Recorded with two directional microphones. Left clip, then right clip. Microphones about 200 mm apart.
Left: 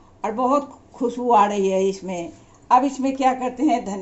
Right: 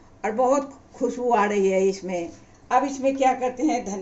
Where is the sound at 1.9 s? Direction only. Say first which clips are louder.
Even; 35° left (ahead or behind).